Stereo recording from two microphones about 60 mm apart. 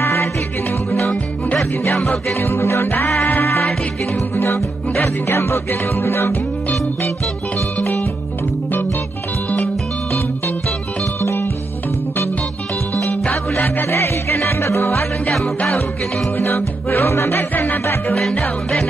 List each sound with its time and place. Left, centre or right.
0.0 s music: left
1.7 s music: left
4.9 s music: left
11.1 s music: left
13.6 s music: left
13.8 s music: left
16.3 s music: left
17.4 s music: left